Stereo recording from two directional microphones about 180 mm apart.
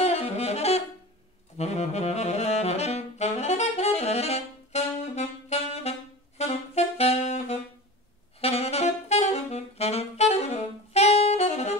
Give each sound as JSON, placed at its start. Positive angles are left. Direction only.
{"t": 0.0, "sound": "saxophone", "side_deg": 35}